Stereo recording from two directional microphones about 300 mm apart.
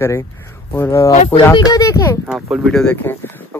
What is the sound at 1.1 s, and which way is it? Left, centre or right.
Speech, left.